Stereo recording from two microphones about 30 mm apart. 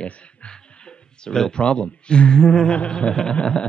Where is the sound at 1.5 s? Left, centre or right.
Left.